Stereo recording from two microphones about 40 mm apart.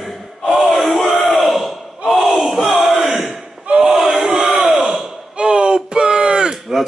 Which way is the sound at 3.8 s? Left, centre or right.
Centre.